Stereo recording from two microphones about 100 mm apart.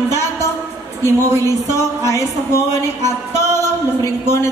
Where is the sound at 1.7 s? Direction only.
30° left (ahead or behind).